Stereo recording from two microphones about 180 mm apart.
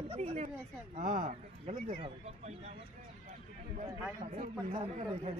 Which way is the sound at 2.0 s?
35° right (ahead or behind).